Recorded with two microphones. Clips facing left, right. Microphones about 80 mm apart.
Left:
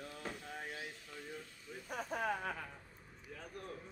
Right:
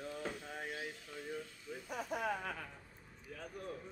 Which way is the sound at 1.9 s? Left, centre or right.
Left.